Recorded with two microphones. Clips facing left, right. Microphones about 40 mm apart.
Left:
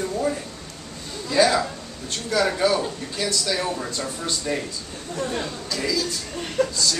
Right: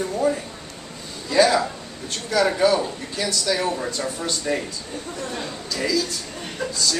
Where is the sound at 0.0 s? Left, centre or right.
Centre.